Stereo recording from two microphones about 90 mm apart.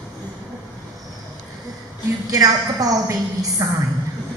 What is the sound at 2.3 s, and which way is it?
A woman's voice, 40° right (ahead or behind).